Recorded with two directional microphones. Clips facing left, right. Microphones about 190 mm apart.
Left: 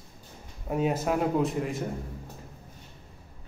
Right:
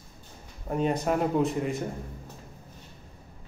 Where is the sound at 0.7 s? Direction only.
5° left (ahead or behind).